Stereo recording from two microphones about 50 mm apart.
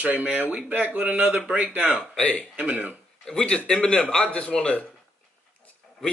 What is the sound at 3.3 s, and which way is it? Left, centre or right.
A man's voice, centre.